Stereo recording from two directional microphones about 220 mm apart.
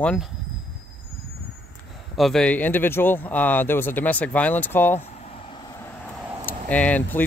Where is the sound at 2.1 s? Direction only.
Centre (ahead or behind).